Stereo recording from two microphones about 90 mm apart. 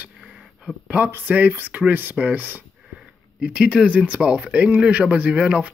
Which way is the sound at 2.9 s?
10° right (ahead or behind).